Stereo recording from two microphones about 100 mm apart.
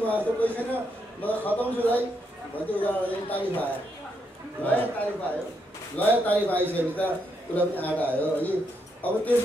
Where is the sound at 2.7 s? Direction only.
15° left (ahead or behind).